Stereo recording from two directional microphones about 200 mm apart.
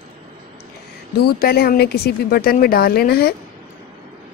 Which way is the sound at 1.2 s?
50° left (ahead or behind).